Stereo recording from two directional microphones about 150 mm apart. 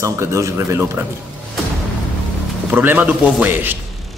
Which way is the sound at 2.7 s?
10° right (ahead or behind).